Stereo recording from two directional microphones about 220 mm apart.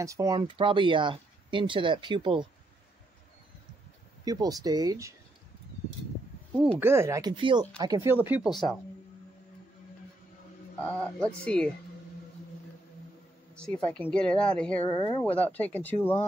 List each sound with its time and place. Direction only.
0.0 s speech: 15° right (ahead or behind)
4.2 s speech: 15° right (ahead or behind)
6.8 s speech: 10° right (ahead or behind)
10.9 s speech: 5° left (ahead or behind)
13.6 s speech: 5° left (ahead or behind)
14.8 s speech: 20° left (ahead or behind)
15.2 s speech: 5° left (ahead or behind)